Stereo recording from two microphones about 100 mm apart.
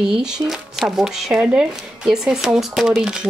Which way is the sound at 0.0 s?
5° right (ahead or behind).